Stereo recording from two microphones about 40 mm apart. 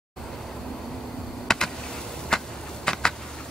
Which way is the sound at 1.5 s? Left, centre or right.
Centre.